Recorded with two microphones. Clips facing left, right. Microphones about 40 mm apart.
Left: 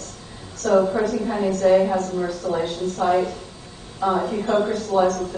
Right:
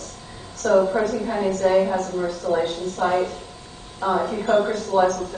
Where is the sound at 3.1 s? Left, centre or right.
Right.